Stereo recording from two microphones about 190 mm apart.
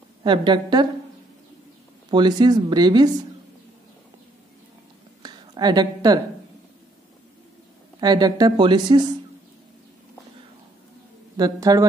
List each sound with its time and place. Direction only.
0.2 s speech: 25° right (ahead or behind)
2.0 s speech: 25° right (ahead or behind)
5.2 s a sound: 20° right (ahead or behind)
8.0 s speech: 20° right (ahead or behind)
11.3 s speech: 20° right (ahead or behind)